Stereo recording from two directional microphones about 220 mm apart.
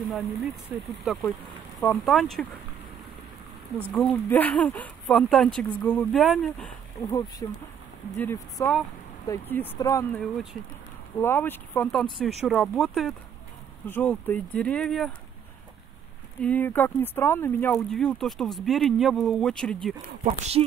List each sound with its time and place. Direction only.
0.1 s speech: centre (ahead or behind)
3.9 s speech: 5° left (ahead or behind)
7.0 s speech: 15° left (ahead or behind)
16.3 s speech: 5° left (ahead or behind)
20.2 s speech: 25° right (ahead or behind)